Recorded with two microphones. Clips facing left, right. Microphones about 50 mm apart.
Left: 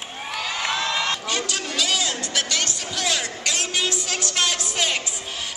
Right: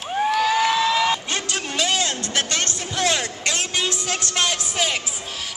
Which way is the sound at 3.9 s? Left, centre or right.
Right.